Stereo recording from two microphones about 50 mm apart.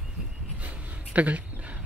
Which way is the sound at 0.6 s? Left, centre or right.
Right.